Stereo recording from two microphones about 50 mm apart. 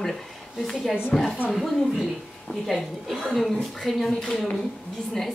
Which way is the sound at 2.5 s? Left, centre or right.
Left.